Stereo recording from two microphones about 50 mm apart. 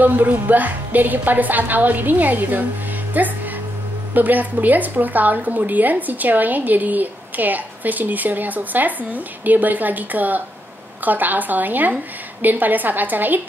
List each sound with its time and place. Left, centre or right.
0.0 s a woman's voice: right